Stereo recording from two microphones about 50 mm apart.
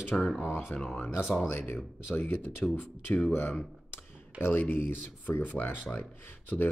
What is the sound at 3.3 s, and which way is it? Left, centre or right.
Speech, left.